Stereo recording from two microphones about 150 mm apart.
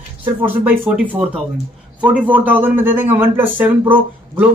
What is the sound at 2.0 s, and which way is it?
Speech, 10° right (ahead or behind).